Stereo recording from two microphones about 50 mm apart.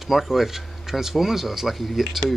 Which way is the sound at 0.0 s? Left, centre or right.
Centre.